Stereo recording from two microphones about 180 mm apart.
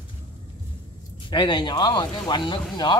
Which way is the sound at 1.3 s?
25° left (ahead or behind).